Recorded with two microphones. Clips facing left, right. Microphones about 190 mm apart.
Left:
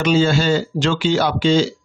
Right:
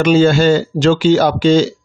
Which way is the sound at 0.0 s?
55° right (ahead or behind).